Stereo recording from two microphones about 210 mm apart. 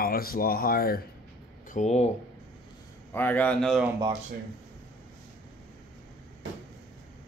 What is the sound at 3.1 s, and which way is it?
Speech, 10° left (ahead or behind).